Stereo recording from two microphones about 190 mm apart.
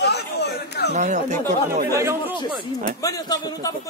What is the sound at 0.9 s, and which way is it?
Speech, 40° right (ahead or behind).